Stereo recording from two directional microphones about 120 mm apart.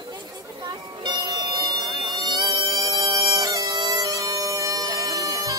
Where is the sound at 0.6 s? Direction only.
35° right (ahead or behind).